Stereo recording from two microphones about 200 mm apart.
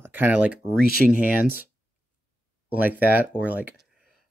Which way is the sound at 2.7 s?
10° right (ahead or behind).